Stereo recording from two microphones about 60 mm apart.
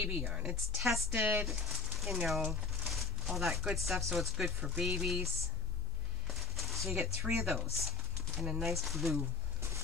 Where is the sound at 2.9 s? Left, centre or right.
Centre.